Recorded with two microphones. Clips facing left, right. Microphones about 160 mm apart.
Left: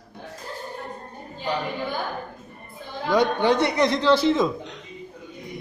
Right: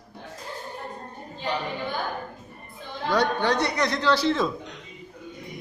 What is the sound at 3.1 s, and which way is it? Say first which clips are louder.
A man's voice: left 3 dB; 20° left (ahead or behind).